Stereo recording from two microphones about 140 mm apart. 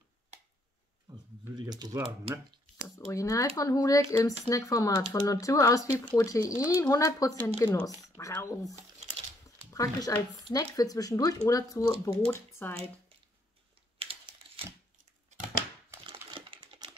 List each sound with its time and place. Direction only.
1.5 s speech: 30° right (ahead or behind)
3.1 s speech: 20° left (ahead or behind)
13.9 s a sound: 40° right (ahead or behind)
16.0 s typing: 35° right (ahead or behind)